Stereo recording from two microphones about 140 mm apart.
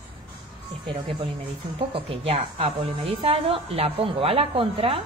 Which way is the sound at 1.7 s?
40° right (ahead or behind).